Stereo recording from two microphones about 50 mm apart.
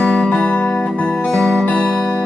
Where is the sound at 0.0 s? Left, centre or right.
Centre.